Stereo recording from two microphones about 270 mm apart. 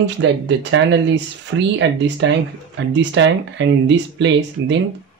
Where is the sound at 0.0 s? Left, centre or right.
Right.